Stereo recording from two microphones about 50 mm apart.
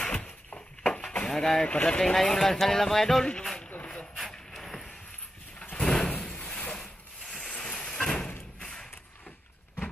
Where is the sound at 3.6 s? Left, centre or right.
Left.